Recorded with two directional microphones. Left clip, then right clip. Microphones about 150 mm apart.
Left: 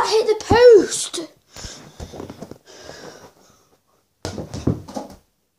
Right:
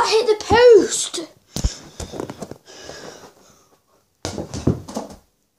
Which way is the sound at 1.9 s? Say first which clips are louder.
Right 5 dB; 30° right (ahead or behind).